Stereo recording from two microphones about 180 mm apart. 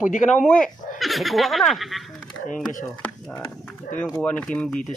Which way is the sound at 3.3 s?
15° left (ahead or behind).